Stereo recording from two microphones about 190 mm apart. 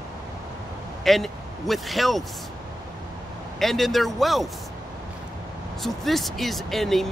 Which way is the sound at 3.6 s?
Centre (ahead or behind).